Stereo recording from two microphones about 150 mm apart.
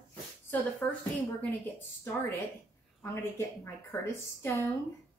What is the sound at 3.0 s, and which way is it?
A woman's voice, 15° left (ahead or behind).